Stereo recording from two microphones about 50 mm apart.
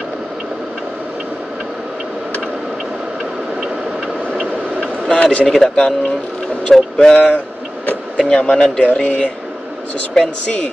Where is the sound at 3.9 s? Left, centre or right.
Right.